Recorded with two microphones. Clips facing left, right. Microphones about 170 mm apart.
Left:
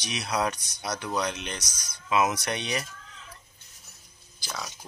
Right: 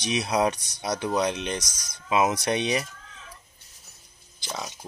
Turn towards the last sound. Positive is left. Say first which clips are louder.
# right 3 dB
turn(degrees=-20)  # may be behind; listen again after turning